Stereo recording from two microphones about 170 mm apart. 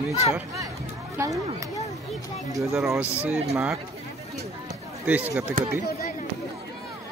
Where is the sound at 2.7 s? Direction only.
Centre (ahead or behind).